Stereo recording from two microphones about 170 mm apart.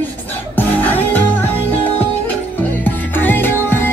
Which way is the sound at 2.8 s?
10° left (ahead or behind).